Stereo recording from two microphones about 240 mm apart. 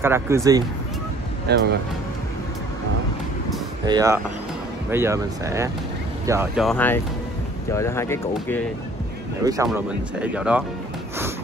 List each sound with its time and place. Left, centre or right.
0.0 s speech: centre
1.5 s speech: right
3.8 s speech: centre
9.4 s speech: centre
9.7 s speech: centre